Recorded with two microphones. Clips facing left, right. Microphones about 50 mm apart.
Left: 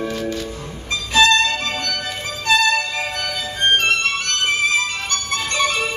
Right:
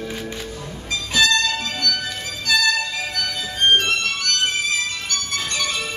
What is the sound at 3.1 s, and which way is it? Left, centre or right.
Music, left.